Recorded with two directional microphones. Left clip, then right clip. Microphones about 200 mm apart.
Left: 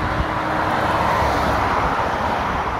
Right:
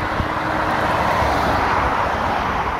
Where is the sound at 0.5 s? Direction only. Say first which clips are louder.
Even; 15° right (ahead or behind).